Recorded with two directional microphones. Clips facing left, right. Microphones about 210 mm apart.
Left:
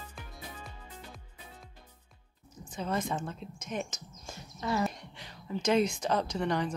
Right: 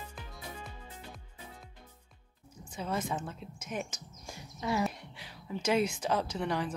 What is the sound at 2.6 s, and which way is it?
A woman's voice, 5° right (ahead or behind).